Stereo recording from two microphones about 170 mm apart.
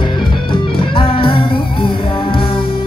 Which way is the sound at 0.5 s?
30° left (ahead or behind).